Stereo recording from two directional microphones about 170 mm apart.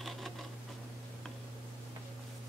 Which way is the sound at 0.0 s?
Centre (ahead or behind).